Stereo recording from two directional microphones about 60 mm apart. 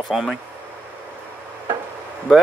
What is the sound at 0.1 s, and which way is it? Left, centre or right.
Speech, centre.